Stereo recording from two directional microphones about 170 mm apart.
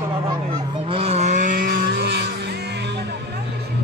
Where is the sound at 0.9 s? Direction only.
35° right (ahead or behind); by 2.2 s 65° right (ahead or behind).